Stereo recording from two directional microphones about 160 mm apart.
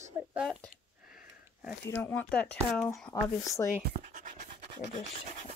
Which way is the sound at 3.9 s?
55° right (ahead or behind).